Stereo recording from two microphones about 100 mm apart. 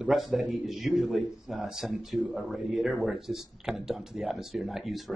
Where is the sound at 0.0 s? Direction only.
Centre (ahead or behind).